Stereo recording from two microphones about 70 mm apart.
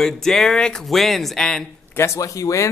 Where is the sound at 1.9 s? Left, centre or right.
Left.